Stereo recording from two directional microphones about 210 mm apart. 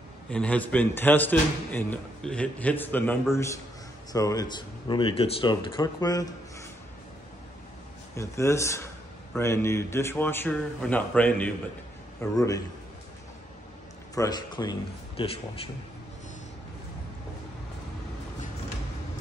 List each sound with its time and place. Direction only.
0.3 s a man's voice: 5° left (ahead or behind)
8.2 s a man's voice: 15° left (ahead or behind)
14.1 s speech: 20° left (ahead or behind)